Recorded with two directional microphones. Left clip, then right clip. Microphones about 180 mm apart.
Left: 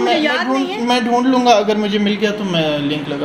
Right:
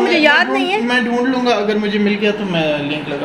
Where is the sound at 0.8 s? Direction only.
35° left (ahead or behind).